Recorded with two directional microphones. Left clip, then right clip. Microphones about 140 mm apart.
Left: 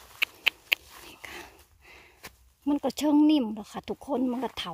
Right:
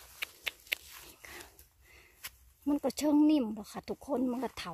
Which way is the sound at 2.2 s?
20° left (ahead or behind).